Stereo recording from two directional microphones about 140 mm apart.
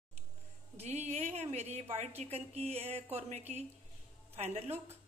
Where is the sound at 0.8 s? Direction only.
50° right (ahead or behind).